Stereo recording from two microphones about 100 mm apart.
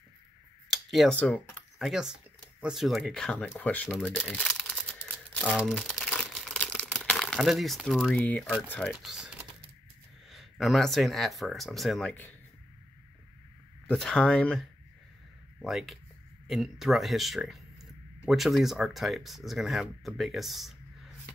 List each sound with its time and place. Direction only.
0.7 s a sound: centre (ahead or behind)
1.1 s speech: 15° left (ahead or behind)
1.8 s speech: 5° right (ahead or behind)
4.6 s crumpling: centre (ahead or behind)
4.9 s crumpling: 20° left (ahead or behind)
5.8 s speech: 5° left (ahead or behind)
6.1 s crumpling: 5° left (ahead or behind)
6.6 s crumpling: 15° left (ahead or behind)
7.3 s speech: centre (ahead or behind)
10.3 s speech: centre (ahead or behind)
13.8 s speech: 5° left (ahead or behind)
15.6 s speech: centre (ahead or behind)